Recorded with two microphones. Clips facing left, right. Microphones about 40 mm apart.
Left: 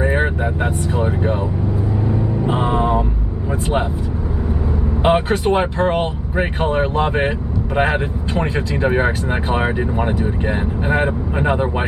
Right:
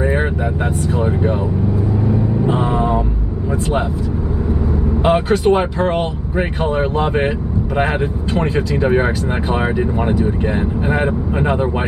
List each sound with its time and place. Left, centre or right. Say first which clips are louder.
0.0 s vehicle: even; centre
0.9 s speech: right 2 dB; centre
2.4 s vehicle: left 1 dB; centre
5.0 s speech: right 1 dB; left
5.4 s speech: right 2 dB; centre